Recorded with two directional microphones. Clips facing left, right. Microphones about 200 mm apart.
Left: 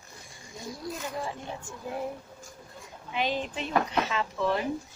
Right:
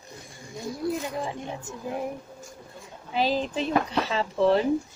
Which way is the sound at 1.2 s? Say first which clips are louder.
Right 3 dB; 20° right (ahead or behind).